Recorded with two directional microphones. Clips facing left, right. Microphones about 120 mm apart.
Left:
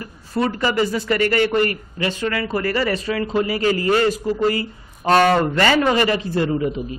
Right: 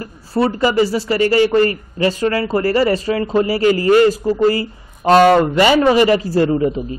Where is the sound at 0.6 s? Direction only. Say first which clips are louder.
Right 6 dB; 20° right (ahead or behind).